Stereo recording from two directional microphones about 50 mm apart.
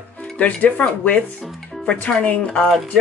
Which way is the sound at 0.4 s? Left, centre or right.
Left.